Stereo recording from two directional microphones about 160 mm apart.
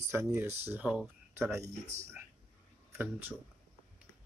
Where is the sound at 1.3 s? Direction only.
15° right (ahead or behind).